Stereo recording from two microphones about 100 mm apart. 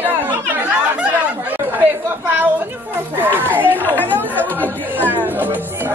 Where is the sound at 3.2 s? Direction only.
20° right (ahead or behind).